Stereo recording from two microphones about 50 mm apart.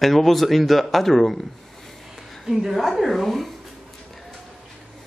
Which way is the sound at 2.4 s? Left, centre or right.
Centre.